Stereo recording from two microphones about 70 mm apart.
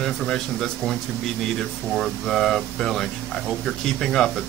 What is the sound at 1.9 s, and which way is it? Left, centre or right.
A man's voice, centre.